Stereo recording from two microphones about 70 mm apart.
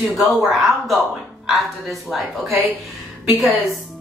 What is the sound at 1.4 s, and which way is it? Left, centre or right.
Speech, centre.